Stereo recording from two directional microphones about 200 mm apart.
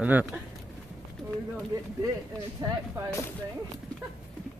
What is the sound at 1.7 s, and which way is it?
Speech, 15° right (ahead or behind).